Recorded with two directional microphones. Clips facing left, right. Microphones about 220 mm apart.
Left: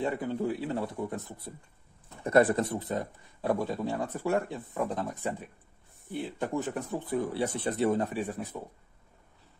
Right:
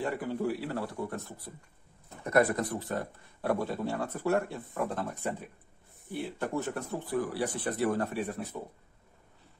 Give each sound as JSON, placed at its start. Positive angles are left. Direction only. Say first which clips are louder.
{"t": 0.0, "sound": "speech", "louder": "left 1 dB", "side_deg": 20}
{"t": 6.3, "sound": "speech", "louder": "left 2 dB", "side_deg": 15}